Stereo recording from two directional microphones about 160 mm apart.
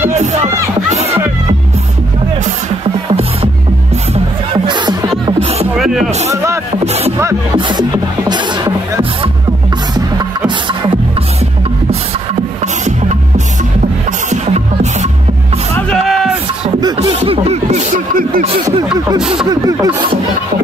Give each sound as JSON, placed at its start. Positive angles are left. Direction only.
{"t": 0.2, "sound": "speech", "side_deg": -45}
{"t": 4.6, "sound": "music", "side_deg": -30}
{"t": 5.8, "sound": "music", "side_deg": -5}
{"t": 6.2, "sound": "speech", "side_deg": -20}
{"t": 6.8, "sound": "music", "side_deg": -40}
{"t": 7.5, "sound": "music", "side_deg": -30}
{"t": 8.2, "sound": "music", "side_deg": -15}
{"t": 14.3, "sound": "music", "side_deg": -45}
{"t": 15.9, "sound": "a sound", "side_deg": 0}
{"t": 16.8, "sound": "snicker", "side_deg": -25}
{"t": 17.2, "sound": "music", "side_deg": -40}
{"t": 18.4, "sound": "speech", "side_deg": -35}
{"t": 19.1, "sound": "speech", "side_deg": -5}
{"t": 19.5, "sound": "snicker", "side_deg": -25}